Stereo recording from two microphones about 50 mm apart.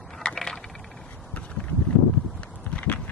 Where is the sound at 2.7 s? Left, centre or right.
Left.